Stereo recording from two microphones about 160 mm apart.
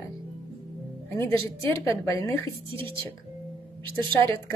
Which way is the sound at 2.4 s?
35° right (ahead or behind).